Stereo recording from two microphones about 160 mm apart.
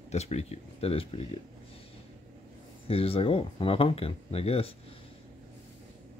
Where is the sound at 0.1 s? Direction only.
40° left (ahead or behind).